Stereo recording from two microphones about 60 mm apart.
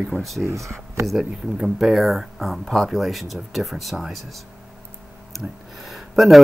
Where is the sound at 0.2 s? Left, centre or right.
Centre.